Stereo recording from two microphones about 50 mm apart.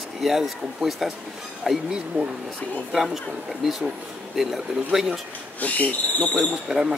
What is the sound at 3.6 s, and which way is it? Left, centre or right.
Speech, centre.